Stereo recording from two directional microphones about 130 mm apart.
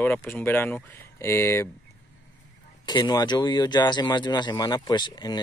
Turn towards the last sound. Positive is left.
turn(degrees=35)  # may be behind; listen again after turning